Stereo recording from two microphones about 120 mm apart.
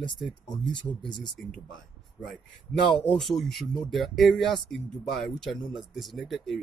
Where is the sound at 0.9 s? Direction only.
30° left (ahead or behind).